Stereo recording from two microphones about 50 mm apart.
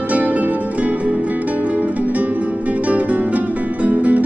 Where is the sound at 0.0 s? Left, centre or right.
Right.